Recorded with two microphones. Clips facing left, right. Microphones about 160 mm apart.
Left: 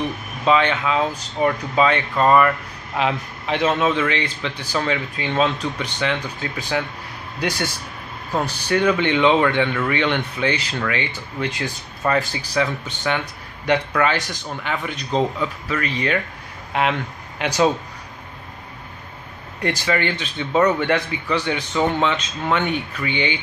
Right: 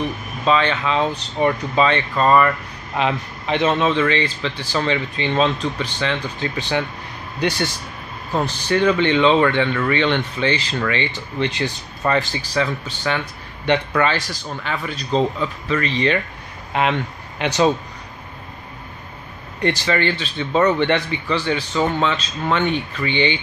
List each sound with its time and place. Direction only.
0.5 s a man's voice: 15° left (ahead or behind)
17.4 s a man's voice: 5° left (ahead or behind)
19.6 s a man's voice: 10° left (ahead or behind)